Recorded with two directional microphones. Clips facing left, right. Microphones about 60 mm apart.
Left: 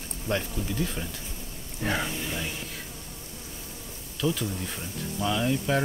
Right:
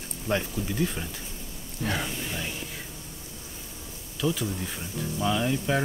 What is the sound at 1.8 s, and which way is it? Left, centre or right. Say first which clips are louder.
Speech: left 1 dB; left.